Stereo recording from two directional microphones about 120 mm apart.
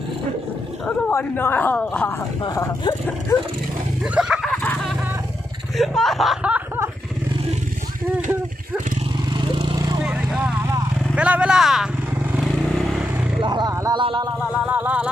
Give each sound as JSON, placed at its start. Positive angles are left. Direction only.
{"t": 1.1, "sound": "a man's voice", "side_deg": 15}
{"t": 2.4, "sound": "speech", "side_deg": 30}
{"t": 4.0, "sound": "roaring cats", "side_deg": -5}
{"t": 4.5, "sound": "dog", "side_deg": 5}
{"t": 5.8, "sound": "speech", "side_deg": 0}
{"t": 9.3, "sound": "vehicle", "side_deg": -40}
{"t": 10.0, "sound": "vehicle", "side_deg": -10}
{"t": 11.1, "sound": "speech", "side_deg": -10}
{"t": 12.4, "sound": "vehicle", "side_deg": 0}
{"t": 13.4, "sound": "vehicle", "side_deg": -40}
{"t": 14.0, "sound": "speech", "side_deg": -40}
{"t": 14.7, "sound": "speech", "side_deg": -15}